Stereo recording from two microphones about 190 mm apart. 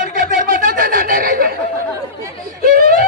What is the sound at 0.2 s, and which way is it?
Snicker, 50° right (ahead or behind).